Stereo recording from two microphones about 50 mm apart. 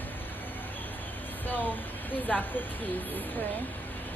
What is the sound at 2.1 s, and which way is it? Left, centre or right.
Speech, left.